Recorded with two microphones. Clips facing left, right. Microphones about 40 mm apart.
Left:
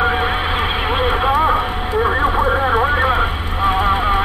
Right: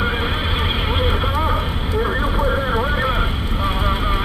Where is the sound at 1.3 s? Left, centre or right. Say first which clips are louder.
Left 6 dB; left.